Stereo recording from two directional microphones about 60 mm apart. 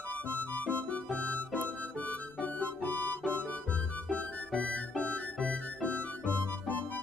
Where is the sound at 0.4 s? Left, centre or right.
Left.